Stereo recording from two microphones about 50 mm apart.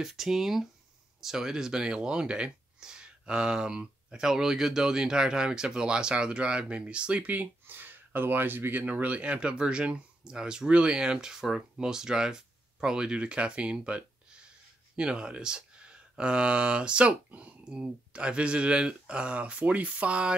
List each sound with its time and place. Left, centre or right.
0.0 s speech: centre; by 7.2 s right
7.2 s speech: right
8.8 s speech: right